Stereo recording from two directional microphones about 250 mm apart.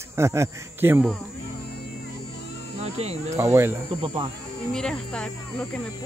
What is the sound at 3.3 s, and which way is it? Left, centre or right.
Speech, centre.